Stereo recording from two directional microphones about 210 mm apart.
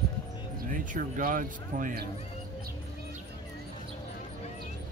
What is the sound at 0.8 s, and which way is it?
Speech, 40° right (ahead or behind).